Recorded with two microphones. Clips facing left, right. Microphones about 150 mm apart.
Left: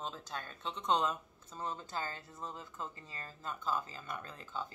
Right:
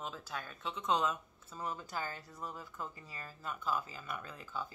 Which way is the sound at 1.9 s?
10° right (ahead or behind).